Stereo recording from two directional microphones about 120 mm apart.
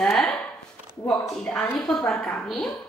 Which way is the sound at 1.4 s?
10° left (ahead or behind).